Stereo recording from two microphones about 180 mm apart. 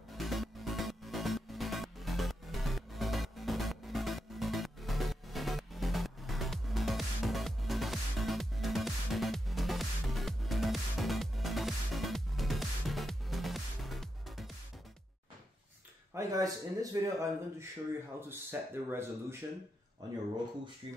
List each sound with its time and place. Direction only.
0.1 s music: centre (ahead or behind)
16.1 s a man's voice: 15° right (ahead or behind)
20.8 s speech: 30° right (ahead or behind)